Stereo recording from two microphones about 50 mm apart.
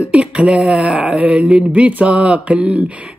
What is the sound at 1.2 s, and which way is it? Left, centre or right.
Mantra, right.